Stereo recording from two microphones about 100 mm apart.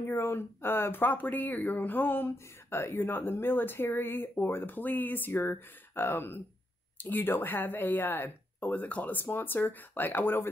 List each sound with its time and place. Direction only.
0.0 s speech: 25° left (ahead or behind)